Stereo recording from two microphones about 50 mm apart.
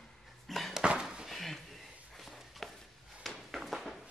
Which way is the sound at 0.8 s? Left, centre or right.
Centre.